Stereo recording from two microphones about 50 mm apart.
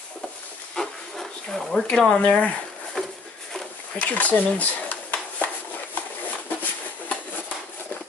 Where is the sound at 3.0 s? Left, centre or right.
Centre.